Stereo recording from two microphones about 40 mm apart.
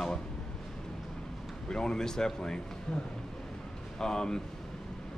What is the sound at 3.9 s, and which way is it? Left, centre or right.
Speech, centre.